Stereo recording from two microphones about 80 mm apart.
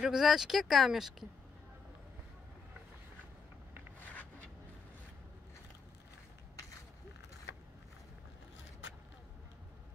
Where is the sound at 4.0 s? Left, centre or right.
Left.